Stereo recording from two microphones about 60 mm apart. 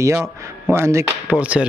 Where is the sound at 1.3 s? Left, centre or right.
Right.